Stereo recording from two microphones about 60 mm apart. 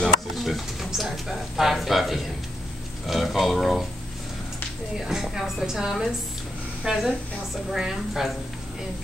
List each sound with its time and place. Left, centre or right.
0.4 s speech: centre
5.0 s a woman's voice: centre